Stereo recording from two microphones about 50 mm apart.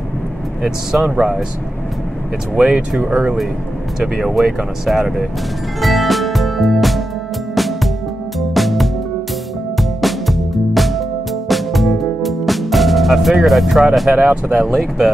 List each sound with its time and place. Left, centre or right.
1.0 s speech: centre
2.5 s speech: centre
4.0 s speech: centre
5.8 s music: centre
14.1 s speech: right
14.5 s speech: centre